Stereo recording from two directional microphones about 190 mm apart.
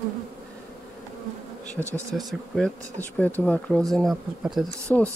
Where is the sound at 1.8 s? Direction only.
15° right (ahead or behind).